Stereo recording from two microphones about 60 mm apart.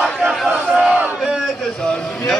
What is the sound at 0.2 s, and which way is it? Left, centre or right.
Crowd, centre.